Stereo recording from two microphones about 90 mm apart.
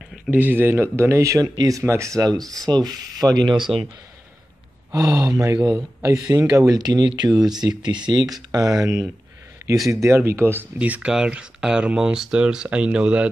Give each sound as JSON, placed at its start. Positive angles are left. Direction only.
{"t": 0.3, "sound": "speech", "side_deg": -20}
{"t": 3.7, "sound": "speech", "side_deg": -90}
{"t": 4.9, "sound": "speech", "side_deg": -35}
{"t": 9.8, "sound": "speech", "side_deg": -30}